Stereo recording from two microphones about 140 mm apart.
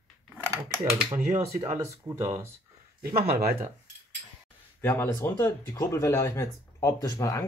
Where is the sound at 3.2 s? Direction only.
90° right.